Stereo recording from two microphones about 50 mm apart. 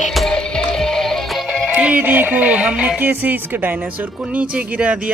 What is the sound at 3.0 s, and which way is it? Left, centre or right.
Speech, right.